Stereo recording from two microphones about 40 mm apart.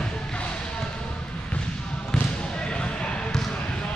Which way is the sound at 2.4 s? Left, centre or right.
Left.